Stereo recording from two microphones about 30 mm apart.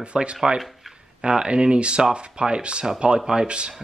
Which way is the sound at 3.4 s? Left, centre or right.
Right.